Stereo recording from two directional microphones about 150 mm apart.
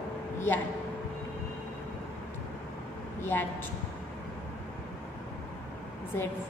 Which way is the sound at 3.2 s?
15° left (ahead or behind).